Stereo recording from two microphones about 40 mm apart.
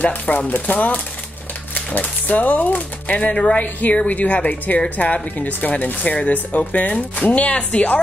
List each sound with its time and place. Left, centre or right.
0.0 s speech: left
3.2 s speech: left
3.5 s speech: left
5.9 s speech: left